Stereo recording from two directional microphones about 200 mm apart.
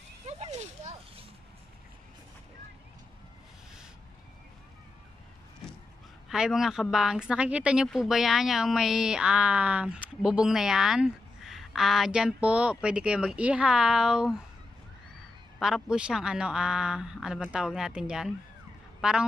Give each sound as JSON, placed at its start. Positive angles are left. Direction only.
{"t": 0.3, "sound": "a sound", "side_deg": -35}
{"t": 6.2, "sound": "a woman's voice", "side_deg": -5}
{"t": 15.6, "sound": "a woman's voice", "side_deg": -5}